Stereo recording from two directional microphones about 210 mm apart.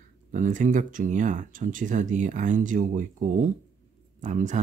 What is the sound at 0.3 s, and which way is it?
Speech, 35° right (ahead or behind).